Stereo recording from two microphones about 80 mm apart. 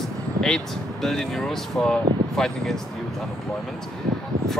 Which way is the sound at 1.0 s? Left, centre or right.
Centre.